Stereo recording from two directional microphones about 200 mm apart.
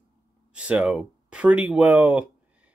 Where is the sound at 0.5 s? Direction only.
5° right (ahead or behind).